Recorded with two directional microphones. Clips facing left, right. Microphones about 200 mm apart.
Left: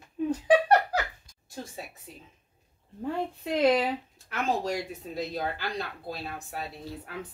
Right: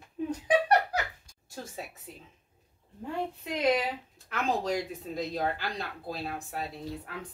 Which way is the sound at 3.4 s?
30° left (ahead or behind).